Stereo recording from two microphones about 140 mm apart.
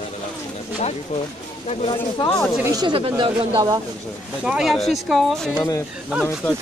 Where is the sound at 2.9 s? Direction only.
40° right (ahead or behind).